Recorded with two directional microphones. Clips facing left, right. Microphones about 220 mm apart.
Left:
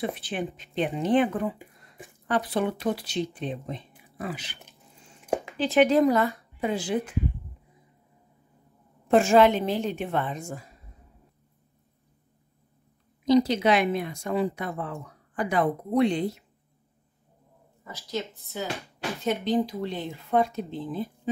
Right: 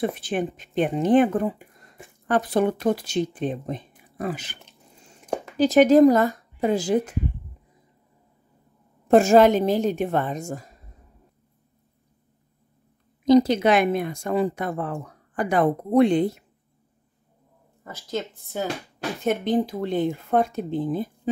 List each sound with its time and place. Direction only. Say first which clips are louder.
0.0 s speech: right 5 dB; 45° right (ahead or behind)
5.6 s speech: right 6 dB; 45° right (ahead or behind)
9.0 s speech: right 4 dB; 45° right (ahead or behind)
13.2 s a woman's voice: right 4 dB; 50° right (ahead or behind)
17.8 s speech: right 3 dB; 50° right (ahead or behind)